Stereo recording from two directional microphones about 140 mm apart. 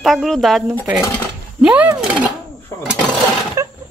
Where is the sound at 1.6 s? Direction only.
10° right (ahead or behind).